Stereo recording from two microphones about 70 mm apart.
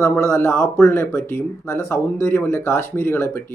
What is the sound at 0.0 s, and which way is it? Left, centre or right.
Speech, left.